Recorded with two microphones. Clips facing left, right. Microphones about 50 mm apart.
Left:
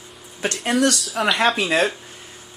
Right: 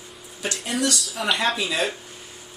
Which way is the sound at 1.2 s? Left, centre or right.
Left.